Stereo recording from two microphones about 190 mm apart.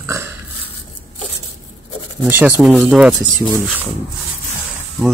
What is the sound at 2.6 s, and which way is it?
Speech, 5° right (ahead or behind).